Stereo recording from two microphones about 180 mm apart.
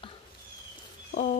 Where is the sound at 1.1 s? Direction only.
40° left (ahead or behind).